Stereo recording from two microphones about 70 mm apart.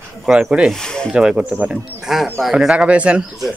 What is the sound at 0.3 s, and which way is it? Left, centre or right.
A man's voice, centre.